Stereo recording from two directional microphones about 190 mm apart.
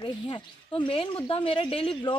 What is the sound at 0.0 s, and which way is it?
Speech, 25° left (ahead or behind).